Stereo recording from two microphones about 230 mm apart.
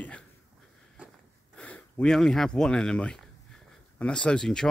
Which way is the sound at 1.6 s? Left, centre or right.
Centre.